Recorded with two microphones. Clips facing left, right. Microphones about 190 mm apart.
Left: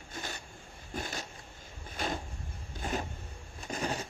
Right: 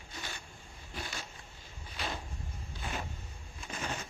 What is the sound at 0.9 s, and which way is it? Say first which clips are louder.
Cat: left 5 dB; 45° left (ahead or behind).